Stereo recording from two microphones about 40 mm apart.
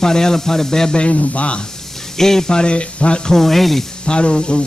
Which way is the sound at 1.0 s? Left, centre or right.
Left.